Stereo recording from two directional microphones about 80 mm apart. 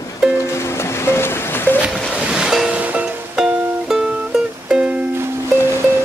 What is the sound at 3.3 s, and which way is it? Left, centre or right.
Music, centre.